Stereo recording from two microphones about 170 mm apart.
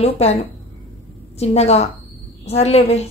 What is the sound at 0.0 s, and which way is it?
Speech, 35° left (ahead or behind).